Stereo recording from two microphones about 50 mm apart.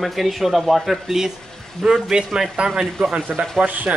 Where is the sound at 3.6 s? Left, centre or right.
Right.